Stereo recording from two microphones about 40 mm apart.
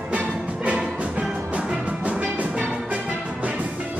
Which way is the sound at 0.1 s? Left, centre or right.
Right.